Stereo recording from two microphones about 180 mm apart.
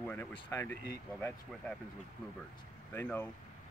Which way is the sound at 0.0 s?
10° left (ahead or behind).